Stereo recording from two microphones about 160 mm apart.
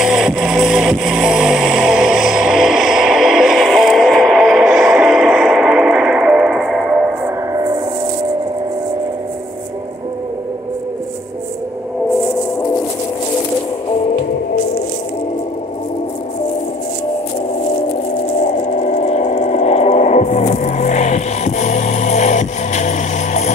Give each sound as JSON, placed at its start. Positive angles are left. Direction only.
{"t": 0.0, "sound": "music", "side_deg": 0}
{"t": 7.5, "sound": "music", "side_deg": -20}
{"t": 18.9, "sound": "a sound", "side_deg": 45}